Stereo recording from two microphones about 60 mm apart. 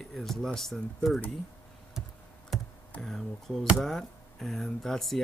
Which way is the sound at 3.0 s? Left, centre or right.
Centre.